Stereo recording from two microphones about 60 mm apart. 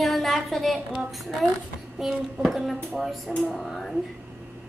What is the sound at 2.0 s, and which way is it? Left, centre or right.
A woman's voice, centre.